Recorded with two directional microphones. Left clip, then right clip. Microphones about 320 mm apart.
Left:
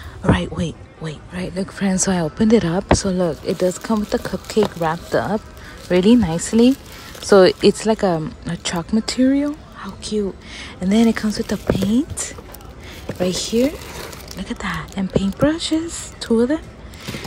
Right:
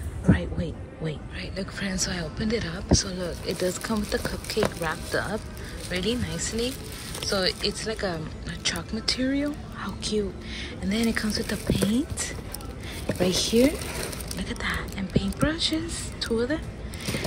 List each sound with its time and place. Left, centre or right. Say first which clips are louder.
0.4 s speech: left 7 dB; centre
7.9 s speech: left 12 dB; centre
13.0 s speech: left 3 dB; centre